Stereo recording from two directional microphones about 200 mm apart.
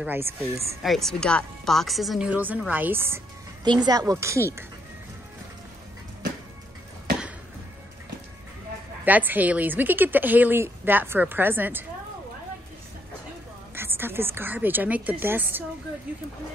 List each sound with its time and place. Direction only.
0.0 s a woman's voice: 10° right (ahead or behind)
0.8 s a woman's voice: centre (ahead or behind)
9.0 s a woman's voice: 10° right (ahead or behind)
13.7 s a woman's voice: 10° right (ahead or behind)